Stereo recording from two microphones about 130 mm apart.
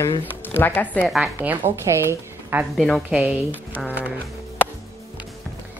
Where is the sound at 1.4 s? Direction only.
20° right (ahead or behind).